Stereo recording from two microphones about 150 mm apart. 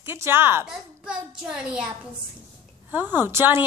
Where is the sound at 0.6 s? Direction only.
5° right (ahead or behind).